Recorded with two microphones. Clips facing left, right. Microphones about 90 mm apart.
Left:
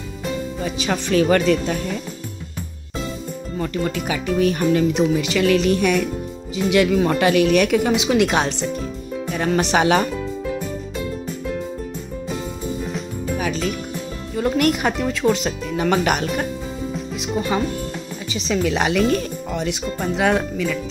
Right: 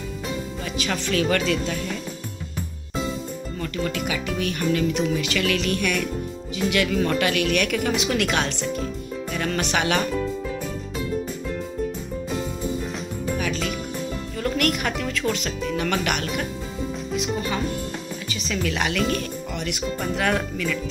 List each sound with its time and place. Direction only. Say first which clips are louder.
0.7 s speech: left 5 dB; 30° left (ahead or behind)
3.5 s speech: left 4 dB; 25° left (ahead or behind)
10.1 s music: left 1 dB; 5° left (ahead or behind)
12.3 s music: even; centre (ahead or behind)
14.3 s music: left 6 dB; 20° left (ahead or behind)
14.7 s speech: left 5 dB; 25° left (ahead or behind)
17.2 s speech: left 5 dB; 25° left (ahead or behind)
20.0 s speech: left 5 dB; 15° left (ahead or behind)